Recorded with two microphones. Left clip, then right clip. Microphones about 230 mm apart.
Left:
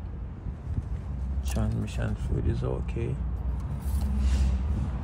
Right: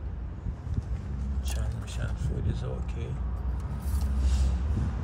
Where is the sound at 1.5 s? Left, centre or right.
Left.